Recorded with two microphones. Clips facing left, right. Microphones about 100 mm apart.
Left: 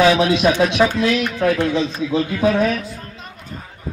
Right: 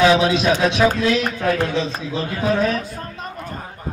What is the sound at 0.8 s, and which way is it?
A man's voice, 40° right (ahead or behind).